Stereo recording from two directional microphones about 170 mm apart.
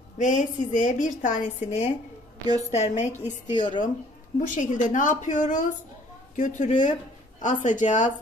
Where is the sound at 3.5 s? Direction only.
30° left (ahead or behind).